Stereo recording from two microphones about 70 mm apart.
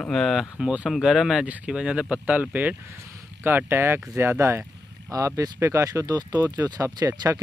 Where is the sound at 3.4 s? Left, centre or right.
Right.